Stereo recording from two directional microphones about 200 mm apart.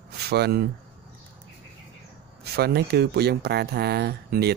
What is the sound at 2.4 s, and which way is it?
Speech, 55° right (ahead or behind).